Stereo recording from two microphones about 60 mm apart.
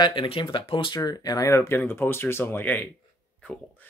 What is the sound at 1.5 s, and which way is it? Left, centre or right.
Speech, left.